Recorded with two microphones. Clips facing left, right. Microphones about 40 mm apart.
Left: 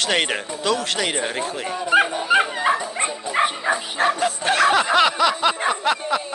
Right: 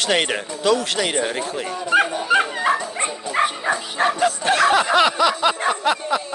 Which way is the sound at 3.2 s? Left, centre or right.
Centre.